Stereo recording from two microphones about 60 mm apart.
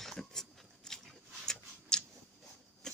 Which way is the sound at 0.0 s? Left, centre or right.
Centre.